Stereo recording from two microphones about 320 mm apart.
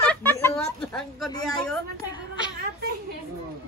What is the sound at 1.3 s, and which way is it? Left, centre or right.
Speech, centre.